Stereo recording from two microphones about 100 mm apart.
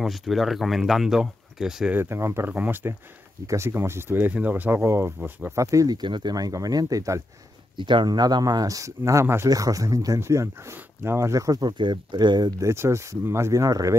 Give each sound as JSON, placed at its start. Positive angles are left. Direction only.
{"t": 0.0, "sound": "speech", "side_deg": 0}
{"t": 2.0, "sound": "speech", "side_deg": -25}
{"t": 5.6, "sound": "speech", "side_deg": -35}
{"t": 7.7, "sound": "speech", "side_deg": -50}
{"t": 12.6, "sound": "speech", "side_deg": -30}